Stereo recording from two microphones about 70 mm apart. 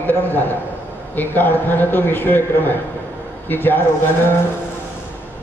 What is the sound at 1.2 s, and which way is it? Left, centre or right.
Speech, left.